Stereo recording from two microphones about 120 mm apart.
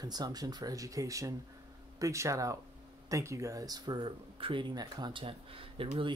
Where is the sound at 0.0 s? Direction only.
35° right (ahead or behind).